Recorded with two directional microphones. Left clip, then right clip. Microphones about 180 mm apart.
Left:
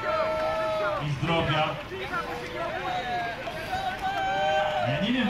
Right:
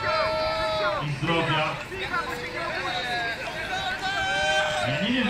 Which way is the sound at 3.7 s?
40° left (ahead or behind).